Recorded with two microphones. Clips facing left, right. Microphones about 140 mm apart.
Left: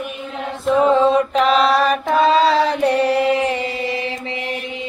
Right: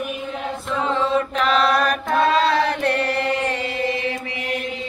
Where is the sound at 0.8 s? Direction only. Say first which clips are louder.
Left 8 dB; 20° left (ahead or behind).